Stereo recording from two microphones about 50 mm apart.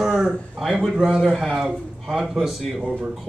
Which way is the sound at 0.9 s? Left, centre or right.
Centre.